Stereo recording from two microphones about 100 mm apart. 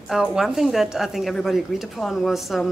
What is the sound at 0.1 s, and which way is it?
Speech, 5° right (ahead or behind).